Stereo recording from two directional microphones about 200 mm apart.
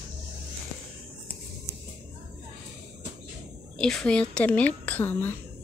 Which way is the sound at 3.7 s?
5° left (ahead or behind).